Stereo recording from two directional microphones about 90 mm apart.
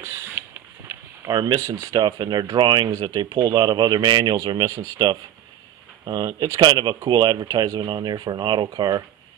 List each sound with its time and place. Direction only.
0.0 s a sound: 30° right (ahead or behind)
1.2 s speech: 45° right (ahead or behind)
2.0 s speech: 55° right (ahead or behind)
4.6 s speech: 40° right (ahead or behind)